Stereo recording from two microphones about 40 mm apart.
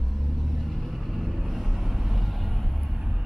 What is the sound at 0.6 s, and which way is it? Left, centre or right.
Vehicle, centre.